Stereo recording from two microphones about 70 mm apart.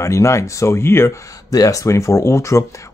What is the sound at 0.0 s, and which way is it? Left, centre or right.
Speech, left.